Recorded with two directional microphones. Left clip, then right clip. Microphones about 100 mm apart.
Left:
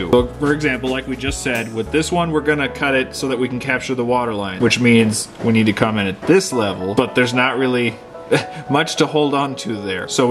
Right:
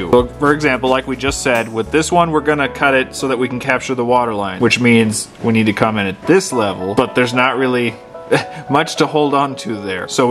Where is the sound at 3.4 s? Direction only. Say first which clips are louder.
Right 3 dB; 35° right (ahead or behind).